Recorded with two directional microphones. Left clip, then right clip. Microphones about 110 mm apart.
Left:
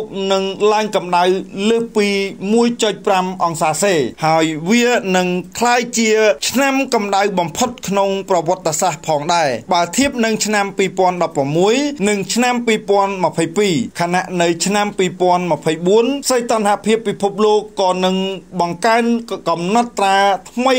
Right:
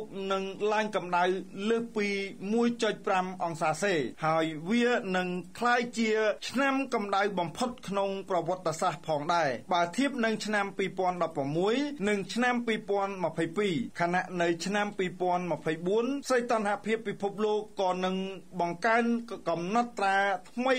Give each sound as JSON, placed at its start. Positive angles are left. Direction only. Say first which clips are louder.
{"t": 0.2, "sound": "a man's voice", "louder": "left 16 dB", "side_deg": 15}